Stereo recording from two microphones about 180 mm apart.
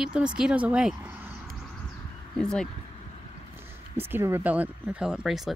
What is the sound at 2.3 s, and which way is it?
Speech, 5° left (ahead or behind).